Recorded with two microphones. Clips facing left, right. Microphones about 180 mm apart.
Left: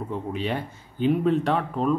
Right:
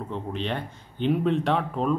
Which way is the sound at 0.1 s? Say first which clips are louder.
Left 2 dB; 10° left (ahead or behind).